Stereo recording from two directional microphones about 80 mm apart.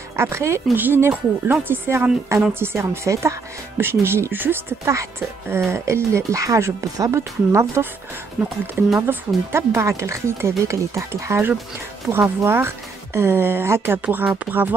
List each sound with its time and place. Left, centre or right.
0.1 s speech: right
2.3 s speech: right
8.4 s speech: centre
9.0 s speech: right